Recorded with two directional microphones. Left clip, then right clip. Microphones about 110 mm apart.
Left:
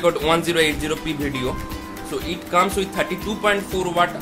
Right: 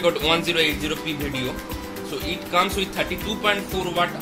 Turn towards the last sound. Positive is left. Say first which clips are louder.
# left 3 dB
turn(degrees=45)  # may be behind; listen again after turning